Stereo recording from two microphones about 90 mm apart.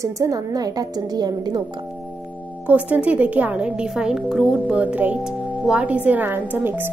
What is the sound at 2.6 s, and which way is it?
A woman's voice, 15° right (ahead or behind).